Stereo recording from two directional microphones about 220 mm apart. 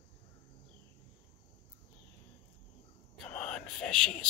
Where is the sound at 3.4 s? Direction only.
5° left (ahead or behind).